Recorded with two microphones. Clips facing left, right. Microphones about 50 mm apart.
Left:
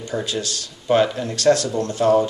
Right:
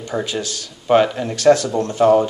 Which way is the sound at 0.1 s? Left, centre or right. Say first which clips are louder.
Right 2 dB; centre.